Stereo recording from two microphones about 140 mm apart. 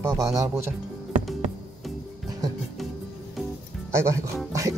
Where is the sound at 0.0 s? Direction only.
20° right (ahead or behind).